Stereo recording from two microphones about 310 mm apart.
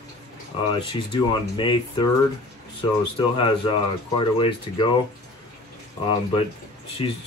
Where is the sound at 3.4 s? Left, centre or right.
Centre.